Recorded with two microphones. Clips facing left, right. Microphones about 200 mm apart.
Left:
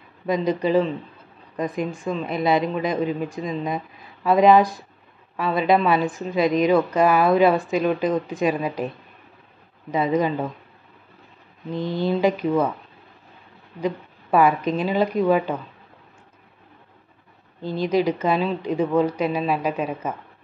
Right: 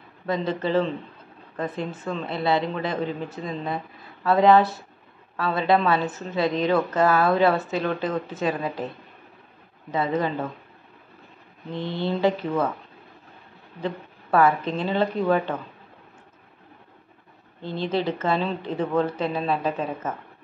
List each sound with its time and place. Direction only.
0.5 s a woman's voice: 15° left (ahead or behind)
12.0 s a woman's voice: 15° left (ahead or behind)
13.7 s a woman's voice: 15° left (ahead or behind)
17.6 s a woman's voice: 10° left (ahead or behind)